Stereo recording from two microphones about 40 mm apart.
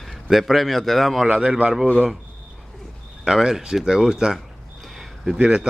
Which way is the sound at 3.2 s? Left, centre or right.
Centre.